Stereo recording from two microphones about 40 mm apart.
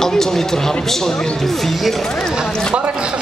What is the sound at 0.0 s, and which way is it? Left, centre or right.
A man's voice, centre.